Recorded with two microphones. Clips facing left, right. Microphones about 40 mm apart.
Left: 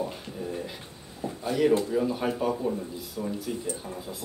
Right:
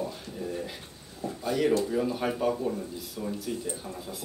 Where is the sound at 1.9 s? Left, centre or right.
Centre.